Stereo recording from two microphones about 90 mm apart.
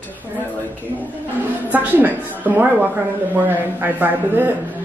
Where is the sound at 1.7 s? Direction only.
20° right (ahead or behind).